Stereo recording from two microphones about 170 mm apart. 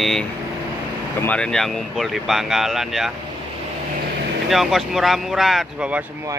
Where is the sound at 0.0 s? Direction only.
5° left (ahead or behind).